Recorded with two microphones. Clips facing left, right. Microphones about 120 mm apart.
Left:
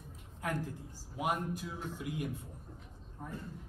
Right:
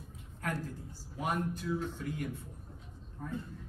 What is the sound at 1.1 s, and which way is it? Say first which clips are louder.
A man's voice: even; 15° left (ahead or behind).